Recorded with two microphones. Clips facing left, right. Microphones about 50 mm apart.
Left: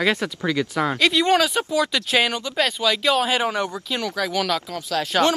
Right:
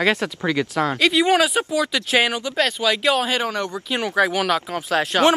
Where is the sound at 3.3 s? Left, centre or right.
Centre.